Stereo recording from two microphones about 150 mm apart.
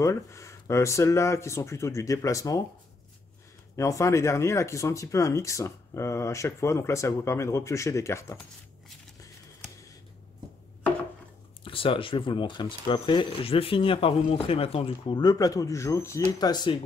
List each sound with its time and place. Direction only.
0.0 s speech: 20° left (ahead or behind)
3.7 s speech: 20° left (ahead or behind)
11.6 s speech: 35° left (ahead or behind)